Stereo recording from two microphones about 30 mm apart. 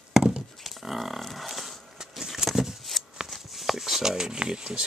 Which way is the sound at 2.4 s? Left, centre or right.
Right.